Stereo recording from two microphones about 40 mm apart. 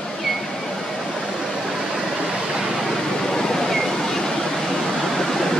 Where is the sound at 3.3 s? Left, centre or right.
Centre.